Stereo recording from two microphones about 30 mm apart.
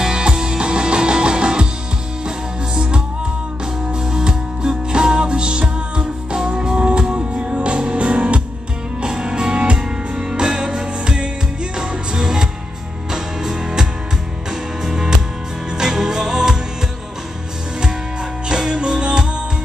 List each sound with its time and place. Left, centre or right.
0.0 s music: right
9.0 s music: right
18.5 s music: right